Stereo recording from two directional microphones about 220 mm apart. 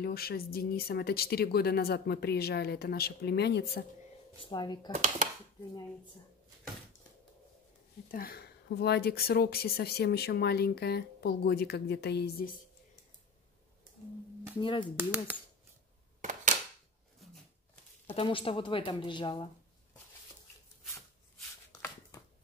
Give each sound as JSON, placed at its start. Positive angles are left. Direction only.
{"t": 0.0, "sound": "speech", "side_deg": 45}
{"t": 4.5, "sound": "a woman's voice", "side_deg": 20}
{"t": 4.9, "sound": "speech", "side_deg": -30}
{"t": 8.1, "sound": "speech", "side_deg": 40}
{"t": 14.6, "sound": "a woman's voice", "side_deg": 20}
{"t": 15.0, "sound": "speech", "side_deg": -10}
{"t": 16.2, "sound": "a sound", "side_deg": -35}
{"t": 18.0, "sound": "a woman's voice", "side_deg": 25}